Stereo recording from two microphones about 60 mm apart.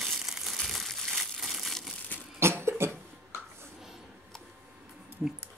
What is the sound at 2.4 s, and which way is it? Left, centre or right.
Cough, right.